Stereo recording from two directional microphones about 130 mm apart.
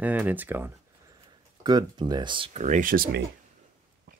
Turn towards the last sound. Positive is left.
turn(degrees=-90)